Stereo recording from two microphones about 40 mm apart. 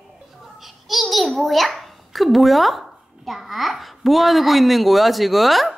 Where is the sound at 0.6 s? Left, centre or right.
Centre.